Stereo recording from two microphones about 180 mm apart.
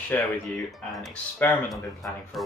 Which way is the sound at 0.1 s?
10° left (ahead or behind).